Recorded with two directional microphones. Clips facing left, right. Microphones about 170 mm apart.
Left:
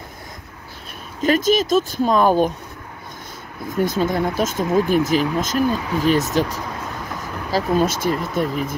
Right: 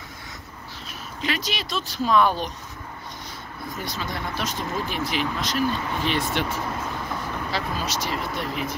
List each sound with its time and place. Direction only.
1.2 s speech: 45° left (ahead or behind)
3.7 s speech: 50° left (ahead or behind)